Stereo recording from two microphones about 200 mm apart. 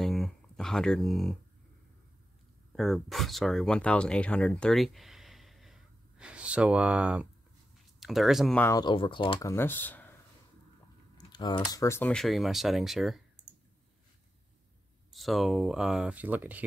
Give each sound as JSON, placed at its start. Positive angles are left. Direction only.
{"t": 0.0, "sound": "a sound", "side_deg": 0}
{"t": 2.7, "sound": "speech", "side_deg": 0}
{"t": 8.6, "sound": "speech", "side_deg": 20}
{"t": 11.1, "sound": "speech", "side_deg": 20}
{"t": 15.1, "sound": "speech", "side_deg": 0}